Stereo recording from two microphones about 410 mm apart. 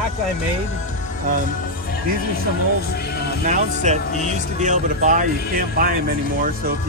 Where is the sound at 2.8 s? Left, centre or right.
Left.